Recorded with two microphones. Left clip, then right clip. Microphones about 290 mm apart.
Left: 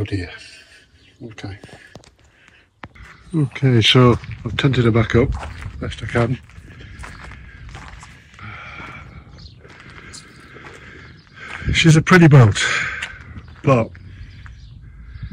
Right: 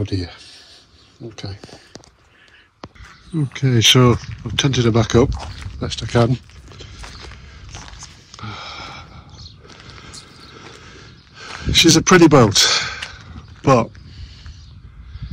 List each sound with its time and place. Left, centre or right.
0.1 s speech: centre
3.3 s speech: centre
5.8 s horse: centre
8.3 s a sound: centre
9.7 s horse: centre